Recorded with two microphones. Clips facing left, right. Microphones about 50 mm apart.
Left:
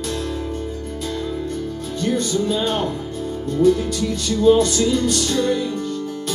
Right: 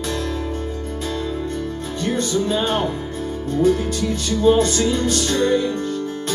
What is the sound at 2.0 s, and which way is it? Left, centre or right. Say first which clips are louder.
Music: even; right.